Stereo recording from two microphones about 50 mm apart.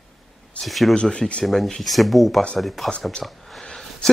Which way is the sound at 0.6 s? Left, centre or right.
Centre.